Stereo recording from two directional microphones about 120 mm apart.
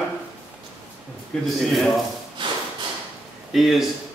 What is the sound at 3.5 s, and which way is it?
Speech, centre (ahead or behind).